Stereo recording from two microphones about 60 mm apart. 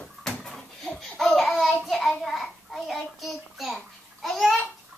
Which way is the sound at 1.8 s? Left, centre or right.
Centre.